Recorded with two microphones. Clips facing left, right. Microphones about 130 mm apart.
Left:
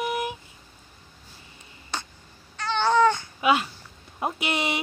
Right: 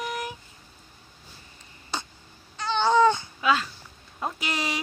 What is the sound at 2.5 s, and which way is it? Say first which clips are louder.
Babbling: even; 15° right (ahead or behind).